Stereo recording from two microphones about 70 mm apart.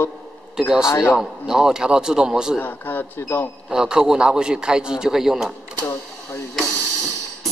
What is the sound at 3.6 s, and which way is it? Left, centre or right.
A man's voice, centre.